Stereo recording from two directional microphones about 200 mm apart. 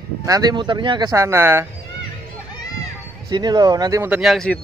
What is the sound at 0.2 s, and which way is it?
Speech, 20° right (ahead or behind).